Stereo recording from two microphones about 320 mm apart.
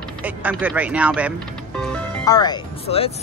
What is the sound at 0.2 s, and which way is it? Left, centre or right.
Speech, centre.